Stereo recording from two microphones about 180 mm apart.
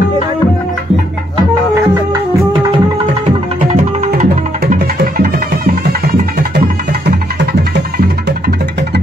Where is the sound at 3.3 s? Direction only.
40° right (ahead or behind).